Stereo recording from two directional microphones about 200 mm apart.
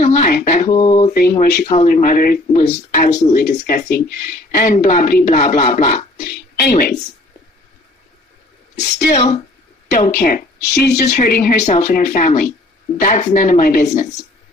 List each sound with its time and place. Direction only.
0.0 s speech: 40° left (ahead or behind)
0.7 s a sound: 20° left (ahead or behind)
1.1 s speech: 50° left (ahead or behind)
1.9 s speech: 45° left (ahead or behind)
2.5 s speech: 35° left (ahead or behind)
3.3 s speech: 50° left (ahead or behind)
6.1 s speech: 50° left (ahead or behind)
9.1 s speech: 35° left (ahead or behind)
10.2 s speech: 50° left (ahead or behind)